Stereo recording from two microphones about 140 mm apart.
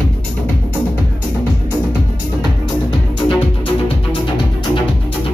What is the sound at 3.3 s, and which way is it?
Music, 40° left (ahead or behind).